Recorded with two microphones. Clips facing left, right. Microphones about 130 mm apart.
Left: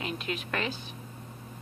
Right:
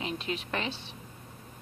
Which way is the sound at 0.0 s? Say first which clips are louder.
Even; 30° right (ahead or behind).